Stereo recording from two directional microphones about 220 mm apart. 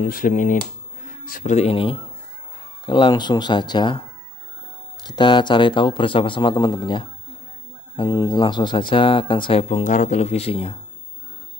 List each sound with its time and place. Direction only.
0.0 s speech: 40° left (ahead or behind); by 4.0 s 20° left (ahead or behind)
5.0 s speech: 20° left (ahead or behind)